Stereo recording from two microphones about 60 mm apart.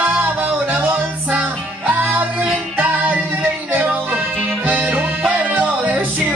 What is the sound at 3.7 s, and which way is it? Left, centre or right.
Music, right.